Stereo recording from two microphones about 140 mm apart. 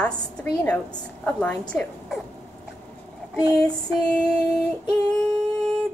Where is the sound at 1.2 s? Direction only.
5° left (ahead or behind).